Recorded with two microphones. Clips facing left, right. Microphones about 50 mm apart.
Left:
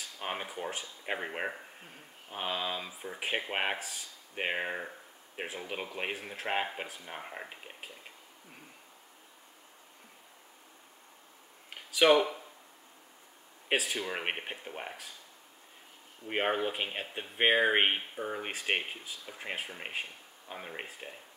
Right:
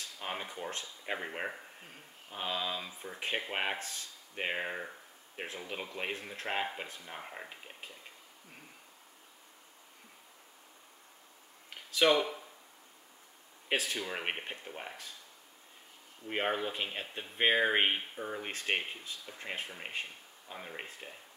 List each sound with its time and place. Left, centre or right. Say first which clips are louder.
0.0 s speech: left 2 dB; centre
2.2 s speech: left 1 dB; centre
11.7 s a sound: left 3 dB; centre
13.7 s speech: left 2 dB; centre
16.3 s speech: left 3 dB; centre